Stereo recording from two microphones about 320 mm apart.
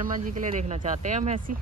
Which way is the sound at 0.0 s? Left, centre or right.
Right.